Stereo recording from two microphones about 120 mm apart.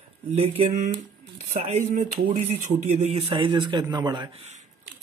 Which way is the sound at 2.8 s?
65° right (ahead or behind).